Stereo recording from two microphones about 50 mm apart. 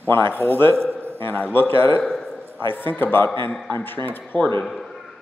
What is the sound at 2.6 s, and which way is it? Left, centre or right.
A man's voice, left.